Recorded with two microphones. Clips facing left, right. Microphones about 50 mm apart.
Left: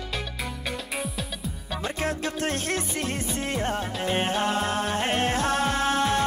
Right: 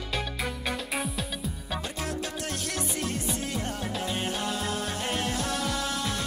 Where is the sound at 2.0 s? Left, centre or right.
Left.